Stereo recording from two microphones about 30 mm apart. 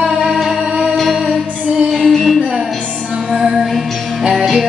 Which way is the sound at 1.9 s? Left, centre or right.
Centre.